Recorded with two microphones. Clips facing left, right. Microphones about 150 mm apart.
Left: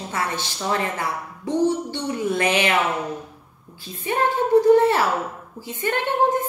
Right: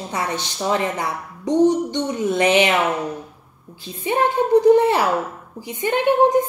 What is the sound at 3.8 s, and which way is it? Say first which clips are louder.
A woman's voice: right 3 dB; 20° right (ahead or behind).